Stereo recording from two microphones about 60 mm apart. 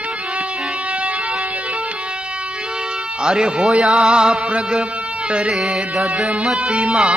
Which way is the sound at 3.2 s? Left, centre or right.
Centre.